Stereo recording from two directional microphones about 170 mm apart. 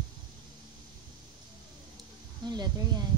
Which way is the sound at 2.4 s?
25° right (ahead or behind).